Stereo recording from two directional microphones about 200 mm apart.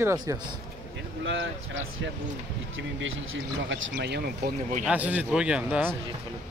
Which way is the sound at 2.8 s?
70° right (ahead or behind).